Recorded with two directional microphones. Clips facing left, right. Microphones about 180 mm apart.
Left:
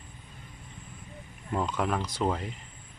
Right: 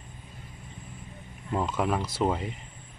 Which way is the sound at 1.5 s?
10° right (ahead or behind).